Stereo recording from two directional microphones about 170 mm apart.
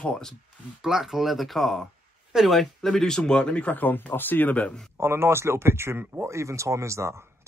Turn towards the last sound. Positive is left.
turn(degrees=-15)  # may be behind; listen again after turning